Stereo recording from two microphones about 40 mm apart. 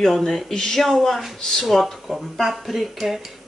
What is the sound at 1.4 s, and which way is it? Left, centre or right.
Speech, centre.